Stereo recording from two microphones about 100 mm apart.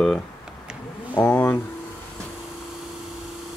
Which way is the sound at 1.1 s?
15° left (ahead or behind).